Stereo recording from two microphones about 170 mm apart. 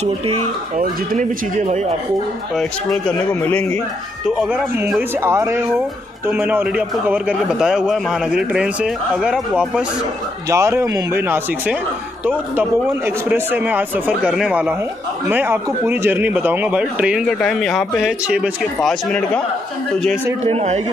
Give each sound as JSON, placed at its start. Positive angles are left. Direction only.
{"t": 0.0, "sound": "speech", "side_deg": -35}
{"t": 2.5, "sound": "a man's voice", "side_deg": 5}
{"t": 4.3, "sound": "speech", "side_deg": -5}
{"t": 10.5, "sound": "speech", "side_deg": -15}
{"t": 20.4, "sound": "speech", "side_deg": -40}